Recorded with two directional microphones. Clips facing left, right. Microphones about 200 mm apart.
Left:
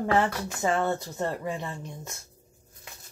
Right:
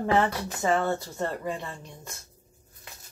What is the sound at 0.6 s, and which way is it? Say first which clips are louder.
Speech: right 1 dB; 20° left (ahead or behind).